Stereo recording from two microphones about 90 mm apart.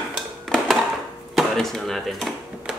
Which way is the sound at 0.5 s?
5° left (ahead or behind).